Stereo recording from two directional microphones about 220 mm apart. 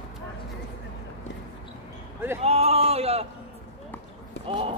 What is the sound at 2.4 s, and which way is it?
Speech, 25° right (ahead or behind).